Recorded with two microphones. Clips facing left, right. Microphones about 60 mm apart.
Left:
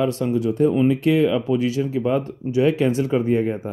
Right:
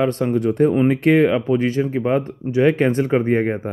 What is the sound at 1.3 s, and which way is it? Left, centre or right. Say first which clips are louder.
Speech: right 2 dB; right.